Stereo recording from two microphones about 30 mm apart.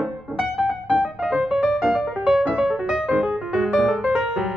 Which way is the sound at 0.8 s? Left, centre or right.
Right.